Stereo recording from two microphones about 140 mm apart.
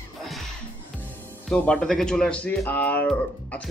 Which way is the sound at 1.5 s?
5° left (ahead or behind).